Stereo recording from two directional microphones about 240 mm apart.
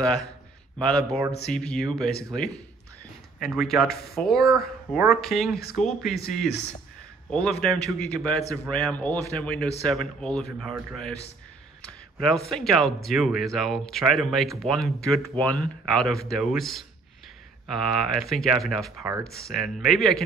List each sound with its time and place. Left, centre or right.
0.0 s speech: centre
3.3 s speech: centre
3.8 s speech: left
4.1 s speech: centre
5.5 s speech: left
5.8 s speech: centre
7.2 s speech: centre
11.8 s a sound: centre
12.4 s speech: centre